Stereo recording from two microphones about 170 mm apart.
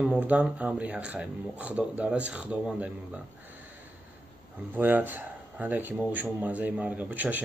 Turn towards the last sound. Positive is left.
turn(degrees=-10)  # may be behind; listen again after turning